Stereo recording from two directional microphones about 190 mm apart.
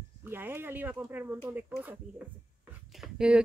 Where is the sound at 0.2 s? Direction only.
10° right (ahead or behind).